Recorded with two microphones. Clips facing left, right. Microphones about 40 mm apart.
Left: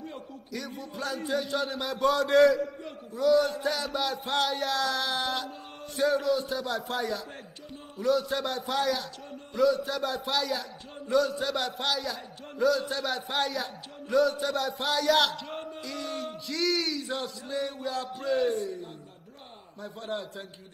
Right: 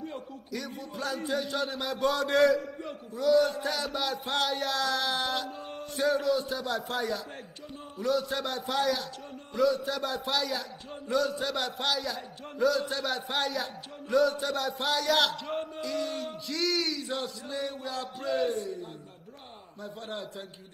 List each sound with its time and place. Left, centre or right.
0.0 s a man's voice: centre
15.3 s speech: right
15.7 s male singing: centre
17.0 s a man's voice: left
19.8 s a man's voice: left